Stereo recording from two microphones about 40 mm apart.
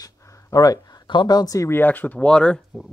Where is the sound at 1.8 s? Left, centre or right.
Left.